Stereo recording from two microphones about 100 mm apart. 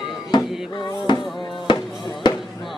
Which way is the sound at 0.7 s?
50° left (ahead or behind).